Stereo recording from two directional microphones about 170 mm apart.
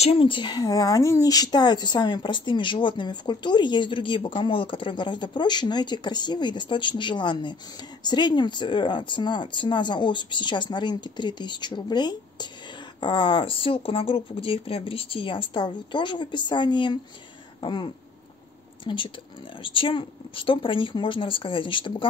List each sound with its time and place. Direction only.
0.0 s speech: 35° left (ahead or behind)
17.6 s throat clearing: 25° left (ahead or behind)
18.9 s speech: 30° left (ahead or behind)